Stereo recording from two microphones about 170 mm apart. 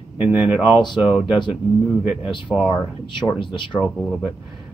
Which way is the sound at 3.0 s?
30° left (ahead or behind).